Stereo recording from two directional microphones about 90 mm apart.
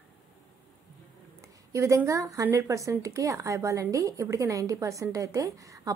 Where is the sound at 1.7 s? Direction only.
35° right (ahead or behind).